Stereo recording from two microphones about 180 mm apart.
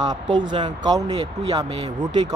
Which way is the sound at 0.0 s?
20° right (ahead or behind).